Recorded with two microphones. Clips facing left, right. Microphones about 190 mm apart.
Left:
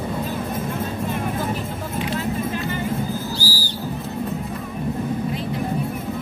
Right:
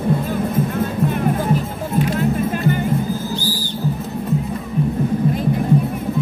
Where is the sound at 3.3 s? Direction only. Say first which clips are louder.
Right 3 dB; 35° left (ahead or behind).